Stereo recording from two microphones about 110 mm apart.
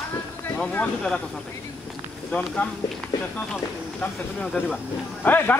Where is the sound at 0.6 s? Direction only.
15° left (ahead or behind).